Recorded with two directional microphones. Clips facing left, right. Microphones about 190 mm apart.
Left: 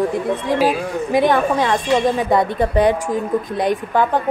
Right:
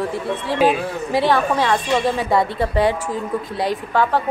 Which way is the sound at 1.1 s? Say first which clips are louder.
Left 2 dB; 15° left (ahead or behind).